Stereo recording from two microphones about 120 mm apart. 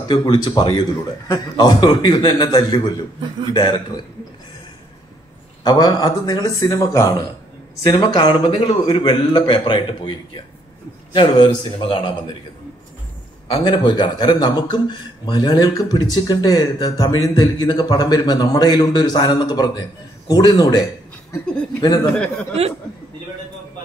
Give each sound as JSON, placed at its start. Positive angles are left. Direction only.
{"t": 0.1, "sound": "a man's voice", "side_deg": 35}
{"t": 5.6, "sound": "a man's voice", "side_deg": 35}
{"t": 13.7, "sound": "a man's voice", "side_deg": 40}
{"t": 22.0, "sound": "speech", "side_deg": 10}